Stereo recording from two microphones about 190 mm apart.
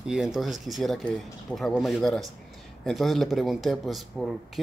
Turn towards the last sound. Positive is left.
turn(degrees=0)  # may be behind; listen again after turning